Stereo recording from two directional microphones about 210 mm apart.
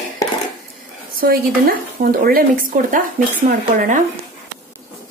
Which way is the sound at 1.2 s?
45° right (ahead or behind).